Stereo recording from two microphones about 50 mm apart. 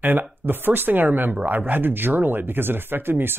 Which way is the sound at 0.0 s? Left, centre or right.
Right.